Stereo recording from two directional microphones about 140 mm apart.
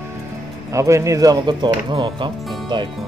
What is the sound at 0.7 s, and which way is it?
Speech, 20° right (ahead or behind).